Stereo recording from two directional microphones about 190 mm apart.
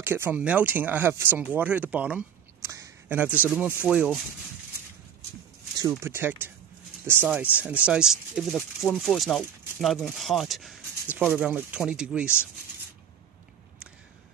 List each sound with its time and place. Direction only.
0.0 s speech: 10° right (ahead or behind)
5.8 s speech: 15° right (ahead or behind)